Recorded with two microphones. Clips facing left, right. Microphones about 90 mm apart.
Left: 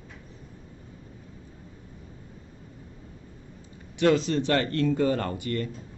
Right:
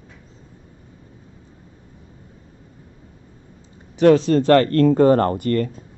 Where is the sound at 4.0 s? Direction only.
45° right (ahead or behind).